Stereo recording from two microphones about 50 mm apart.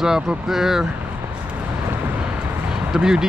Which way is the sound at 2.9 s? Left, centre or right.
Centre.